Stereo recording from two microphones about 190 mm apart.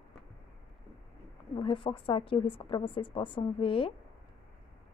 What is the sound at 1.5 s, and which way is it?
A woman's voice, 25° left (ahead or behind).